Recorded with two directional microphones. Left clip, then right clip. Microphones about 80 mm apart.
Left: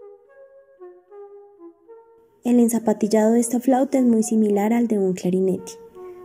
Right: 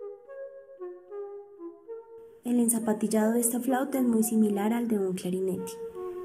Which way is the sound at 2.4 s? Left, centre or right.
Left.